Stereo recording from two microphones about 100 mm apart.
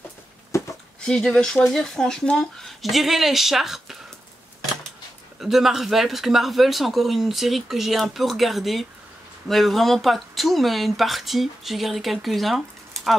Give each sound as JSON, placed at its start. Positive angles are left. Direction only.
{"t": 0.5, "sound": "a sound", "side_deg": 30}
{"t": 1.0, "sound": "speech", "side_deg": 5}
{"t": 5.4, "sound": "speech", "side_deg": -5}